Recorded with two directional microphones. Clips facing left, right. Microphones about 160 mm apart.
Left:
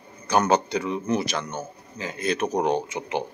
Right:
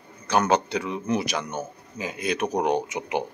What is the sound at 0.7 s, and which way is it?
A man's voice, 5° right (ahead or behind).